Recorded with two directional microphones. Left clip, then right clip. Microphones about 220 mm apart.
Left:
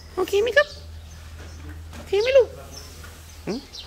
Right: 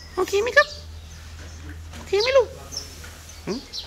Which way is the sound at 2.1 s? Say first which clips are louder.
Left 1 dB; 10° left (ahead or behind).